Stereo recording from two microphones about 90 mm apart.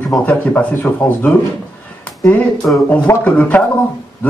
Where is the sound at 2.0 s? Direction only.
15° left (ahead or behind).